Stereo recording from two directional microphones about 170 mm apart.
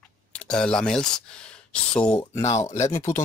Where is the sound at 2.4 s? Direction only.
40° left (ahead or behind).